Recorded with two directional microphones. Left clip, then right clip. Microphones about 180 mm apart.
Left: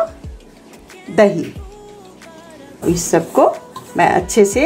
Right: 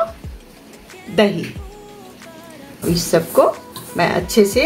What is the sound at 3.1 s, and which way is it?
A woman's voice, 35° left (ahead or behind).